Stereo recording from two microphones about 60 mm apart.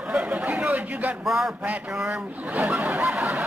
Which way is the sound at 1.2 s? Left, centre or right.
Centre.